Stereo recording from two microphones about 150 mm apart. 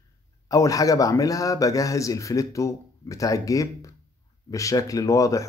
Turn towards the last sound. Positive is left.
turn(degrees=20)  # may be behind; listen again after turning